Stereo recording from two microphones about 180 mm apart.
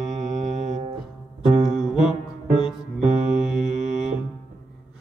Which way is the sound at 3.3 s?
5° right (ahead or behind).